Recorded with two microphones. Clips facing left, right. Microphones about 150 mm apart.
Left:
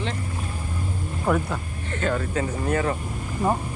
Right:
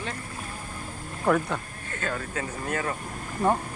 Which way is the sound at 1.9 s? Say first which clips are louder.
Left 7 dB; 25° left (ahead or behind).